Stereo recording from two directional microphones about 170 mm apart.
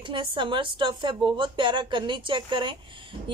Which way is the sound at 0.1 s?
30° right (ahead or behind).